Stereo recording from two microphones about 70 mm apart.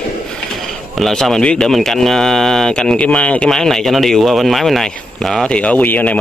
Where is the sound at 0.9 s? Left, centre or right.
Centre.